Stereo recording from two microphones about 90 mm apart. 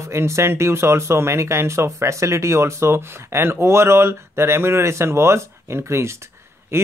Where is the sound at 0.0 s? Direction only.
30° right (ahead or behind).